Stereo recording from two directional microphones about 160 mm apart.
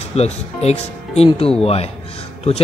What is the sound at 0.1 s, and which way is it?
Speech, 40° left (ahead or behind).